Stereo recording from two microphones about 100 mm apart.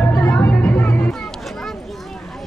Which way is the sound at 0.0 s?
20° left (ahead or behind).